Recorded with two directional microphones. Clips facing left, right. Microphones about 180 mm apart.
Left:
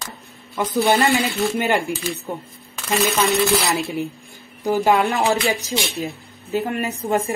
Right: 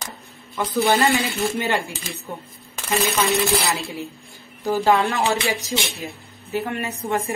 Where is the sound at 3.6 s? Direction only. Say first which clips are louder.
Left 4 dB; 20° left (ahead or behind).